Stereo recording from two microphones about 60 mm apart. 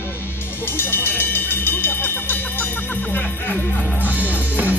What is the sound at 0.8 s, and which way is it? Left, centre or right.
Music, left.